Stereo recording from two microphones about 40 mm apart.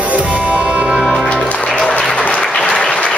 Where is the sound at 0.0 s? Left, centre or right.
Right.